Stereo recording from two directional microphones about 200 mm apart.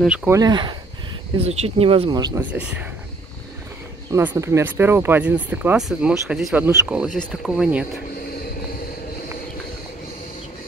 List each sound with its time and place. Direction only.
0.0 s speech: 5° right (ahead or behind)
0.4 s speech: 20° right (ahead or behind)
4.1 s speech: 10° right (ahead or behind)